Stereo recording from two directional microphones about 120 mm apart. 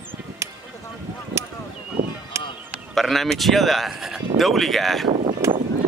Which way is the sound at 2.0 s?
70° right (ahead or behind).